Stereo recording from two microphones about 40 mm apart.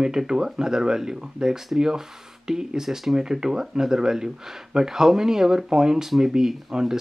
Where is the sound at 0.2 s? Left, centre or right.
Centre.